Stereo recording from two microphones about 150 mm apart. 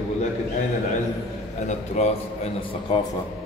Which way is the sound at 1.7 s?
50° left (ahead or behind).